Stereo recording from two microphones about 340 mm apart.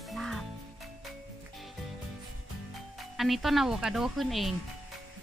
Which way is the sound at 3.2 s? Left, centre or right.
Centre.